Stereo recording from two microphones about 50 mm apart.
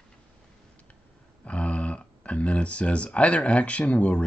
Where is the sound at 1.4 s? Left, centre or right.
Left.